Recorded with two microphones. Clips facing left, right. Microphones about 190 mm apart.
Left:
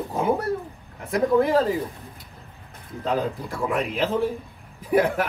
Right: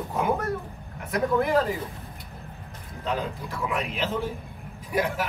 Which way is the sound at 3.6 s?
50° left (ahead or behind).